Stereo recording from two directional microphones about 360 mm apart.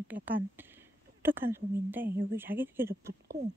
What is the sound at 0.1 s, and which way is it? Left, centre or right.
A woman's voice, centre.